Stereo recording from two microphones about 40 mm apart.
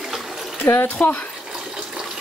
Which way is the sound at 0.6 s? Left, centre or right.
Left.